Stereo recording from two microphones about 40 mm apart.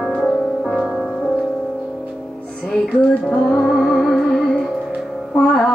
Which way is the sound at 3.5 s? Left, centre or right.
Centre.